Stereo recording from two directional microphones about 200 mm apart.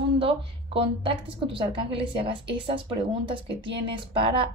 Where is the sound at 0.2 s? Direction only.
25° right (ahead or behind).